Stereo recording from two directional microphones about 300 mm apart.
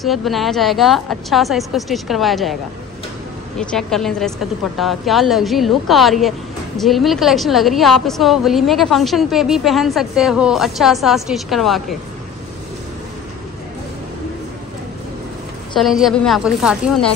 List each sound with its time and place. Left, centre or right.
0.0 s a woman's voice: centre
3.5 s a woman's voice: centre
15.7 s a woman's voice: centre